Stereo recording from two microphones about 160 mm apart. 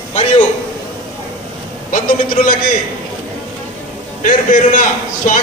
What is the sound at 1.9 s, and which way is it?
Speech, 60° left (ahead or behind).